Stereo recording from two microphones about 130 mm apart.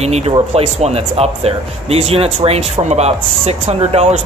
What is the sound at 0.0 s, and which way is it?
Speech, 55° right (ahead or behind).